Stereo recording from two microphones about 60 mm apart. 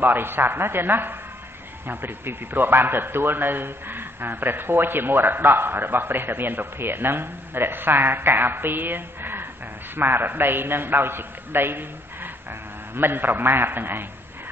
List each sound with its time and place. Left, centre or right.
0.0 s a man's voice: right